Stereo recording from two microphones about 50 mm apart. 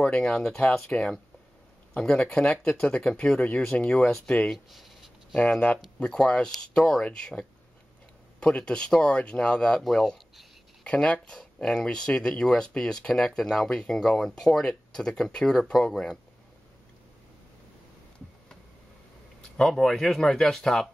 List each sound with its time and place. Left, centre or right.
0.0 s speech: centre
4.5 s speech: centre
5.3 s speech: left
10.8 s speech: left
19.6 s speech: centre